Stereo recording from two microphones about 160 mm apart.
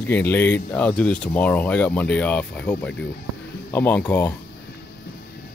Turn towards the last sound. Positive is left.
turn(degrees=10)  # may be behind; listen again after turning